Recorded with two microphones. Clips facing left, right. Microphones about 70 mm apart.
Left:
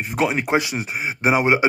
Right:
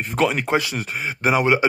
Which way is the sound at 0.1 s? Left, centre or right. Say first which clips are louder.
Even; centre.